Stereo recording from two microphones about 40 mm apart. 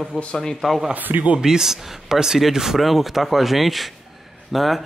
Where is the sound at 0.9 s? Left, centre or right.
Right.